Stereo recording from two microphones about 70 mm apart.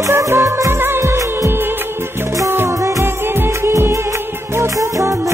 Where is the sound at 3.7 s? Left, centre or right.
Right.